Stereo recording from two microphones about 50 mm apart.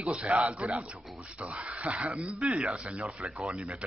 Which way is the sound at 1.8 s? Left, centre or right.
Right.